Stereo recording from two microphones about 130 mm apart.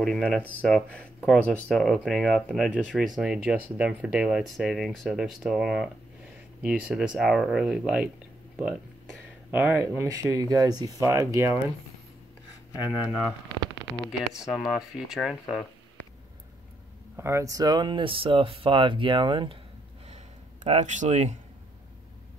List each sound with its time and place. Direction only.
0.0 s speech: 5° left (ahead or behind)
9.5 s speech: 15° right (ahead or behind)
12.7 s speech: 15° right (ahead or behind)
13.7 s a sound: 30° right (ahead or behind)
15.0 s speech: centre (ahead or behind)
17.2 s speech: 20° right (ahead or behind); by 19.6 s 40° right (ahead or behind)
20.6 s speech: 60° right (ahead or behind)